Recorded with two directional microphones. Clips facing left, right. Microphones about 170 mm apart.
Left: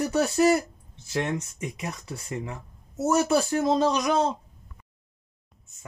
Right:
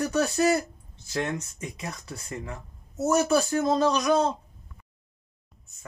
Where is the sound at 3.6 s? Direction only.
20° left (ahead or behind).